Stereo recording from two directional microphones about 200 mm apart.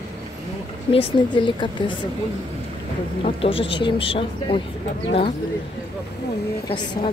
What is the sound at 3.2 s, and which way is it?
A woman's voice, 30° left (ahead or behind).